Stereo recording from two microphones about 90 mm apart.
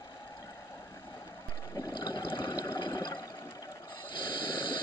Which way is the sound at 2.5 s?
35° left (ahead or behind).